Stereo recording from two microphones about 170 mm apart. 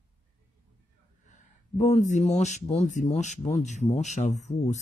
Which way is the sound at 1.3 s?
45° left (ahead or behind).